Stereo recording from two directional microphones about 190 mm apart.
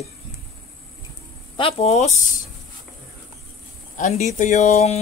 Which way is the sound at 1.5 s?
30° left (ahead or behind).